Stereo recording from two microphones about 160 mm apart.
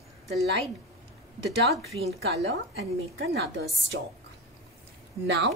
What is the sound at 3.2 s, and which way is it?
Speech, 90° right.